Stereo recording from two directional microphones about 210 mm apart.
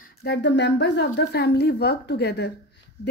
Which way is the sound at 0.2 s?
55° left (ahead or behind).